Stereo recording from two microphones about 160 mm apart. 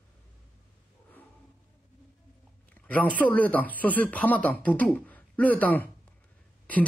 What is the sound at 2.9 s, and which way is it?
Speech, 10° left (ahead or behind).